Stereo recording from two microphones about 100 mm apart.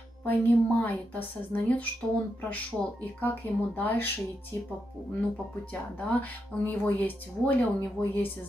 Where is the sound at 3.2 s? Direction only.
20° left (ahead or behind).